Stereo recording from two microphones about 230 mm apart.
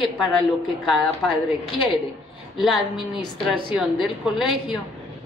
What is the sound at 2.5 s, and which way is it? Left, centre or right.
Speech, centre.